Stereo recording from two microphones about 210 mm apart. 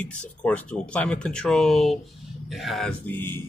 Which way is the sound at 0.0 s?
5° left (ahead or behind).